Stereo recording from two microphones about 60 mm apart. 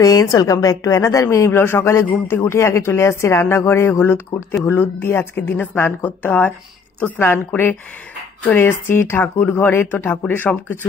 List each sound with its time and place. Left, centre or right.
0.0 s a woman's voice: left